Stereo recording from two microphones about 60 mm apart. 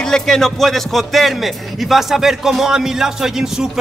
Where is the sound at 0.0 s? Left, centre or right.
Centre.